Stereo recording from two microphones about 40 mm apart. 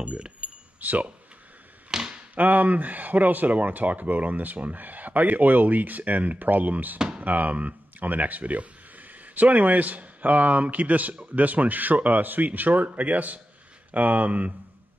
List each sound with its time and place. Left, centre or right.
0.0 s speech: right
0.7 s speech: right
1.9 s a sound: centre
2.3 s speech: right